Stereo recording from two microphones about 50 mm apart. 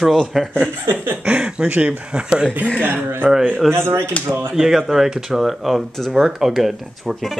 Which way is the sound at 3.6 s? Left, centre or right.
Right.